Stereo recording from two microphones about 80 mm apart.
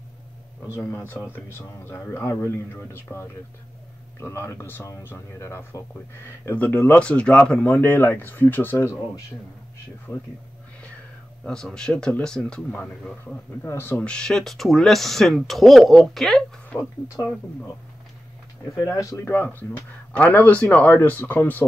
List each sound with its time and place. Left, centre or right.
0.9 s a man's voice: left
6.4 s a man's voice: left
7.0 s a man's voice: centre; by 9.2 s left
11.4 s a man's voice: centre
13.6 s a man's voice: left
14.0 s speech: centre
18.9 s speech: left
19.3 s a man's voice: left